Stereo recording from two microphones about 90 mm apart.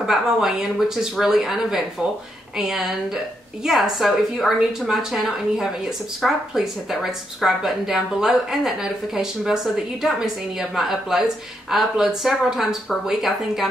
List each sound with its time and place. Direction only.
0.0 s a woman's voice: 5° right (ahead or behind)